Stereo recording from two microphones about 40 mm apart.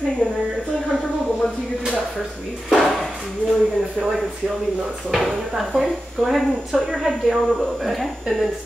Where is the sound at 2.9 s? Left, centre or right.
Centre.